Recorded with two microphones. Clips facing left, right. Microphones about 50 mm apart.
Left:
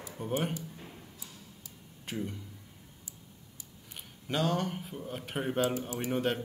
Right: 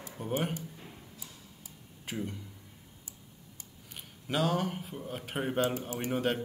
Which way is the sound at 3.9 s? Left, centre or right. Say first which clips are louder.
Right 1 dB; centre.